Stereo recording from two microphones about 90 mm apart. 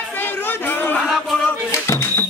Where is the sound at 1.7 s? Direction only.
30° left (ahead or behind).